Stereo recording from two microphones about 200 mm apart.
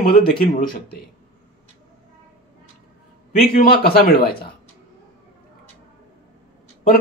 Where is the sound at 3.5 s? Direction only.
50° left (ahead or behind).